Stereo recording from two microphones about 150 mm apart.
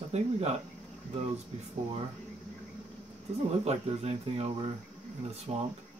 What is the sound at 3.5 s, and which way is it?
Speech, 45° right (ahead or behind).